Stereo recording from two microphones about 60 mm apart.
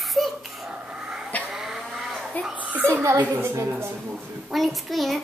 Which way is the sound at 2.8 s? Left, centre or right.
Right.